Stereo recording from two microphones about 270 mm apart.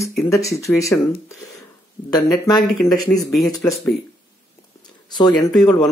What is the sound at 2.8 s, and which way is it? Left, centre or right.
Speech, centre.